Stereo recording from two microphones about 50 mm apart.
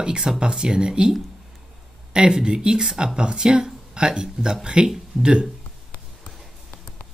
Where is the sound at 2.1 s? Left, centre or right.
Centre.